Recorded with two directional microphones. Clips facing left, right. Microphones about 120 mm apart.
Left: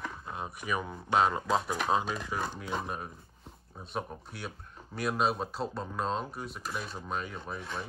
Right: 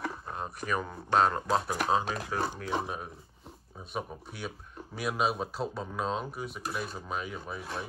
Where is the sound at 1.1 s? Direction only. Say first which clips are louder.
Right 1 dB; 40° right (ahead or behind).